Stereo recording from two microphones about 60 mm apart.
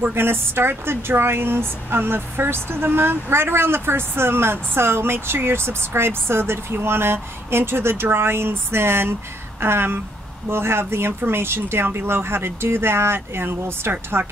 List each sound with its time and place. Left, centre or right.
0.1 s speech: right